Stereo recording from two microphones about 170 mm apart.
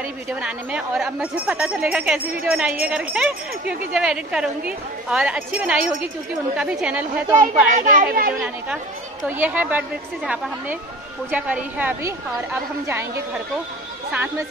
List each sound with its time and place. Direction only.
0.3 s a woman's voice: 5° right (ahead or behind)
7.8 s speech: 55° right (ahead or behind)
8.3 s a woman's voice: 5° right (ahead or behind)